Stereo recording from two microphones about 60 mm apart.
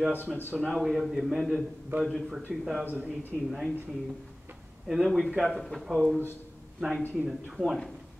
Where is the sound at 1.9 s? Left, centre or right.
Right.